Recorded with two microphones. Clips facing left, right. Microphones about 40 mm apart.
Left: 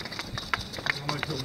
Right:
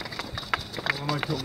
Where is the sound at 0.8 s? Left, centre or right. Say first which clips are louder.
Right 2 dB; centre.